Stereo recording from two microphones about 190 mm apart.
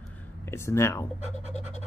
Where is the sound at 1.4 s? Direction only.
35° left (ahead or behind).